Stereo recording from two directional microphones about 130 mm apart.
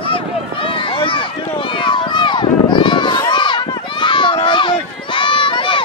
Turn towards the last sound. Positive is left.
turn(degrees=40)  # may be behind; listen again after turning